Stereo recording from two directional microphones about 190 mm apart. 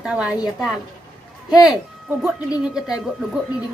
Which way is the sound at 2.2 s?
5° right (ahead or behind).